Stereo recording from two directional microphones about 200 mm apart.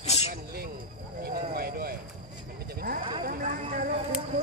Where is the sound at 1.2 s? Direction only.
50° right (ahead or behind).